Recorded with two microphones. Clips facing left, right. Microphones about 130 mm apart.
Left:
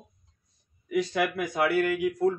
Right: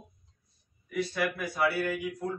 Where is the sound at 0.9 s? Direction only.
90° left.